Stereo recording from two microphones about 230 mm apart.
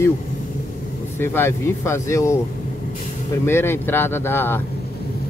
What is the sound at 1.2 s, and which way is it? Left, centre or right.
A man's voice, centre.